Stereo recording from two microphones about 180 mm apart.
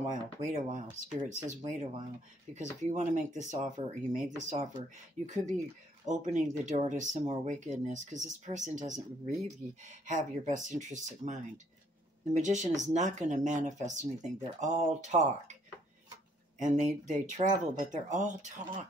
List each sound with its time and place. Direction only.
0.0 s speech: 40° right (ahead or behind)
6.0 s speech: 40° right (ahead or behind)
16.5 s speech: 40° right (ahead or behind)